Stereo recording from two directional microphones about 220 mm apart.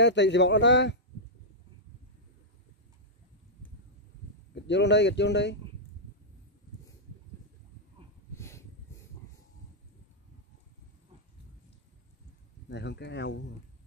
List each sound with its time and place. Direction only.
0.0 s speech: 55° left (ahead or behind)
4.6 s speech: 55° left (ahead or behind)
8.4 s a sound: 10° left (ahead or behind)
12.6 s speech: 50° left (ahead or behind)